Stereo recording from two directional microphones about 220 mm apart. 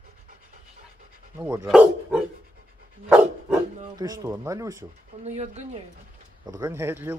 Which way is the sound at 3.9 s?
15° right (ahead or behind).